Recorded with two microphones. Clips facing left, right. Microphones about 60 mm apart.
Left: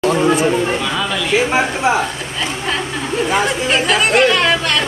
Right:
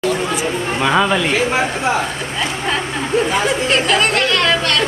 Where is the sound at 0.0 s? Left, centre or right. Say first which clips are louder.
Left 5 dB; left.